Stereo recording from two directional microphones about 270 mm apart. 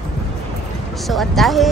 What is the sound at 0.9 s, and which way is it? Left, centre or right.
Speech, centre.